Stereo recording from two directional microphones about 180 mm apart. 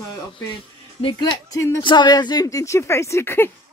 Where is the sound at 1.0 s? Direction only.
20° left (ahead or behind).